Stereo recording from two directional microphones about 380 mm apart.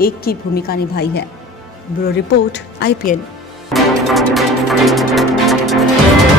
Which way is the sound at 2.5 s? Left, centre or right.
Left.